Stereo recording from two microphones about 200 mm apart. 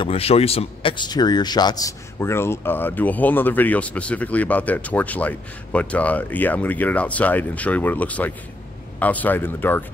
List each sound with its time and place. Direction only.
0.0 s speech: 30° left (ahead or behind); by 9.8 s 10° left (ahead or behind)